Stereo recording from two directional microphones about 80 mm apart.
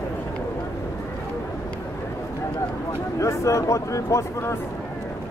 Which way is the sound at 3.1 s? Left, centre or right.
Left.